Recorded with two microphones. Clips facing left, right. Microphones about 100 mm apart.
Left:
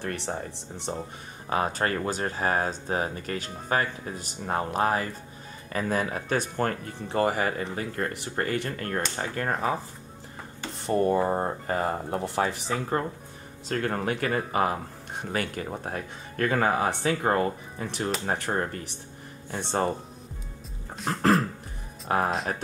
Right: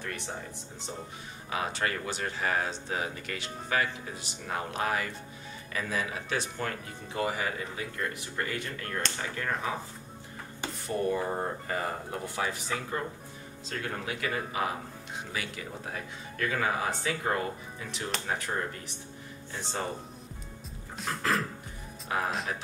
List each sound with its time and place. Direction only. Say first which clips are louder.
0.3 s speech: left 6 dB; 60° left (ahead or behind)
1.5 s speech: left 5 dB; 40° left (ahead or behind)
10.9 s speech: left 7 dB; 45° left (ahead or behind)
13.7 s speech: left 8 dB; 50° left (ahead or behind)
21.0 s cough: left 5 dB; centre (ahead or behind)
22.0 s speech: left 6 dB; 45° left (ahead or behind)